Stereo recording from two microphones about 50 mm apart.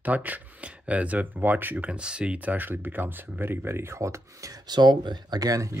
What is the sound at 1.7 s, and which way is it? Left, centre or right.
Speech, right.